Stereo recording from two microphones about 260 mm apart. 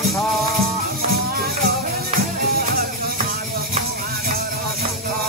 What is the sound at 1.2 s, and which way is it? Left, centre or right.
Music, right.